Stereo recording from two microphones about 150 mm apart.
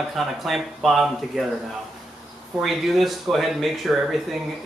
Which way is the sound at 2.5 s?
Centre (ahead or behind).